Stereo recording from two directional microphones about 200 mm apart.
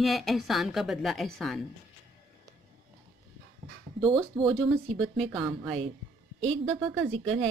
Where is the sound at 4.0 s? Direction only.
25° right (ahead or behind).